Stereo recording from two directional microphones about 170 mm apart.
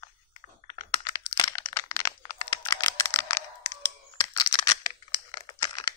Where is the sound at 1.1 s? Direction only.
25° left (ahead or behind).